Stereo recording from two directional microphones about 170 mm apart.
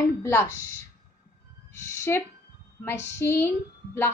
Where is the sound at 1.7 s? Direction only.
15° left (ahead or behind).